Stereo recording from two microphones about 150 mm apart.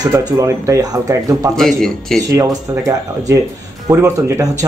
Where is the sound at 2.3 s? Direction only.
20° right (ahead or behind).